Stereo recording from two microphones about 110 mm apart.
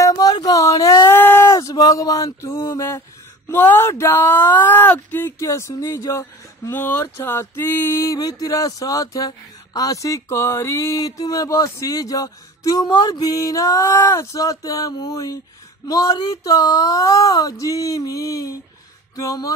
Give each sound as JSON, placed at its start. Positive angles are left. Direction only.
{"t": 0.0, "sound": "a sound", "side_deg": 35}
{"t": 1.0, "sound": "male singing", "side_deg": 20}
{"t": 3.4, "sound": "speech", "side_deg": 20}
{"t": 6.7, "sound": "speech", "side_deg": 20}
{"t": 8.1, "sound": "a sound", "side_deg": 35}
{"t": 19.1, "sound": "speech", "side_deg": 30}